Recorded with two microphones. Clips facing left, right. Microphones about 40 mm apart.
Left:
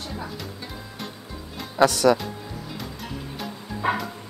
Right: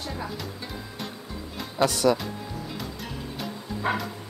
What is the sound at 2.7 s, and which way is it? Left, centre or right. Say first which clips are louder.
Music: left 1 dB; centre.